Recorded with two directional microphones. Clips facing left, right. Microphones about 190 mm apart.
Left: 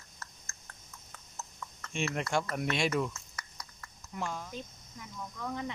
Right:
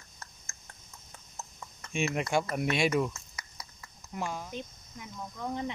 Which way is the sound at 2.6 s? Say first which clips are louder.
Right 3 dB; 10° right (ahead or behind).